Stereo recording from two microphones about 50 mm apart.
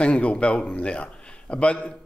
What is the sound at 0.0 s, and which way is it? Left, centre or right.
A man's voice, left.